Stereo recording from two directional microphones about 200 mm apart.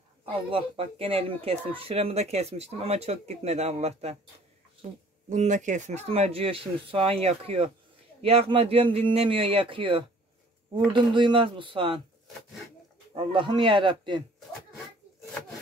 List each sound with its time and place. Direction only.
0.2 s a man's voice: 25° right (ahead or behind)
13.1 s a man's voice: 25° right (ahead or behind)